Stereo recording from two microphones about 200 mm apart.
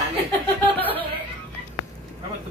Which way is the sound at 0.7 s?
10° left (ahead or behind).